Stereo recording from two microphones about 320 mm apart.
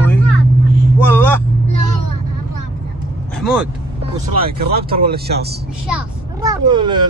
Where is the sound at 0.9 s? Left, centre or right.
Centre.